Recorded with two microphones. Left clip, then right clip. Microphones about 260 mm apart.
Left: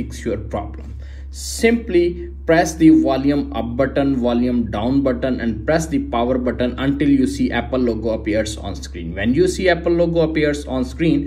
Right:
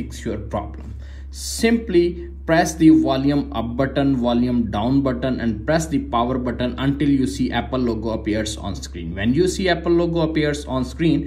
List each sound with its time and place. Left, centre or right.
0.2 s a man's voice: centre